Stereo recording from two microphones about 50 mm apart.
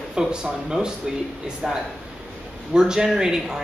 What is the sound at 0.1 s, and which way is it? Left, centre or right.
Speech, centre.